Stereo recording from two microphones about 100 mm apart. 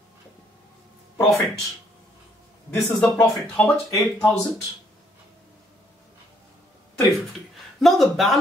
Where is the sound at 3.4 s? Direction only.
20° left (ahead or behind).